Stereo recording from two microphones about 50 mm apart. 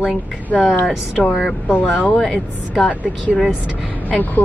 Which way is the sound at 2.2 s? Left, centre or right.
Centre.